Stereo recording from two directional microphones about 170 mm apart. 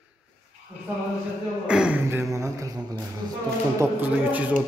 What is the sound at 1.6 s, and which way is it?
Speech, 5° right (ahead or behind).